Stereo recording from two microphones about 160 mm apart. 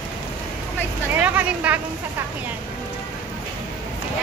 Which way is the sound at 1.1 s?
10° right (ahead or behind).